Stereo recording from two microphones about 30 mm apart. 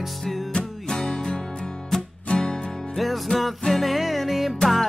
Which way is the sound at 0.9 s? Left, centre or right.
Left.